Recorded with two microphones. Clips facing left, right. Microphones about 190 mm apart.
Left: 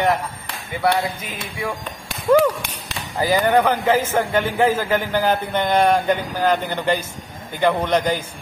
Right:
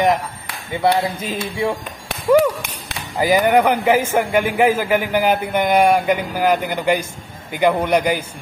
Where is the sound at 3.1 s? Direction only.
15° right (ahead or behind).